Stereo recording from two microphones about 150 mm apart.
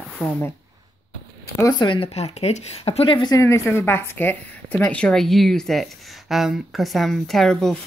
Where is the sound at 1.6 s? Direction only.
30° left (ahead or behind).